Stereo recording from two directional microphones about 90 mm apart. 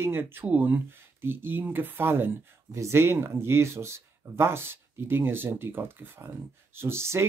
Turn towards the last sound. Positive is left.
turn(degrees=-30)  # may be behind; listen again after turning